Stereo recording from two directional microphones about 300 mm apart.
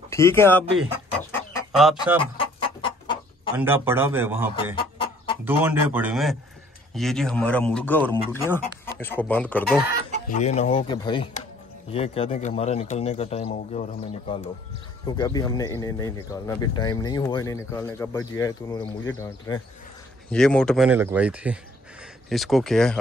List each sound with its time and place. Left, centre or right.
0.1 s speech: centre
2.1 s chicken: centre
3.5 s speech: centre
4.7 s chicken: centre
5.4 s a man's voice: centre
10.3 s a man's voice: left; by 22.9 s centre